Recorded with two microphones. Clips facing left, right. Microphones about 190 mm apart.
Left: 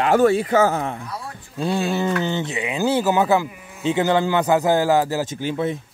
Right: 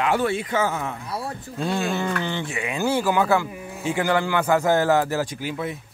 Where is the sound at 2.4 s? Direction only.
20° left (ahead or behind).